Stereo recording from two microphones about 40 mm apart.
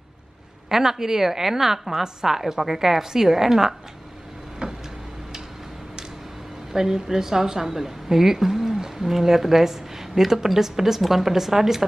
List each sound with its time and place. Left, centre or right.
0.7 s a woman's voice: centre
4.6 s vehicle: right
6.7 s a woman's voice: centre